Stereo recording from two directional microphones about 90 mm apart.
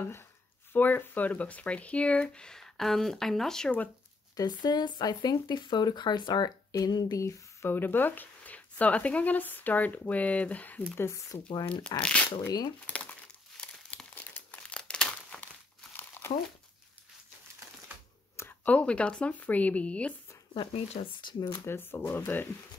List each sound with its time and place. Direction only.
0.7 s speech: 20° left (ahead or behind)
4.4 s speech: 50° left (ahead or behind)
7.2 s speech: 35° left (ahead or behind)
7.7 s speech: 20° left (ahead or behind)
11.0 s speech: 25° left (ahead or behind)
11.9 s speech: 45° left (ahead or behind)
12.8 s crumpling: 15° left (ahead or behind)
15.4 s crumpling: 20° left (ahead or behind)
18.6 s speech: 15° left (ahead or behind)
20.5 s speech: 60° left (ahead or behind)
21.6 s speech: 25° left (ahead or behind)